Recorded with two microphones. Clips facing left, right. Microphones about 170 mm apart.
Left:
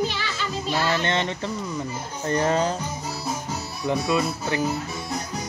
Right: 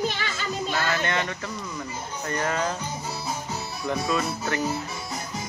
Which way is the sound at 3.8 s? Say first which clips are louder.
Left 3 dB; 15° left (ahead or behind).